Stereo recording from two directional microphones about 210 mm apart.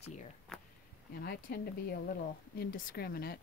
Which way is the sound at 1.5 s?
50° left (ahead or behind).